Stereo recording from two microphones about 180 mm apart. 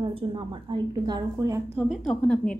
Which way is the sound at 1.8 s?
Centre (ahead or behind).